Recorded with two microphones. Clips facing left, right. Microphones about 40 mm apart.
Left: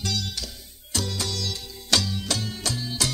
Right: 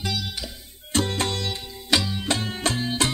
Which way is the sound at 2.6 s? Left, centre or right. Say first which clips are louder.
Right 5 dB; right.